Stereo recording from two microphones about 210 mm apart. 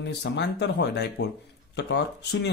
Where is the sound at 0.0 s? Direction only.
55° left (ahead or behind).